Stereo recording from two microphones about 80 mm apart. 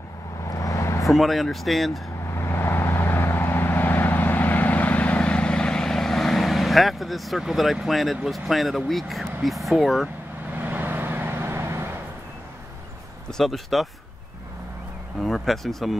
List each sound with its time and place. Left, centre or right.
0.5 s vehicle: left
1.0 s speech: centre
2.3 s vehicle: left; by 10.0 s centre
10.5 s vehicle: right
13.3 s speech: centre
15.1 s speech: centre